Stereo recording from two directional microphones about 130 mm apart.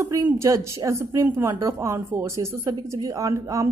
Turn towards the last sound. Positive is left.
turn(degrees=-25)  # may be behind; listen again after turning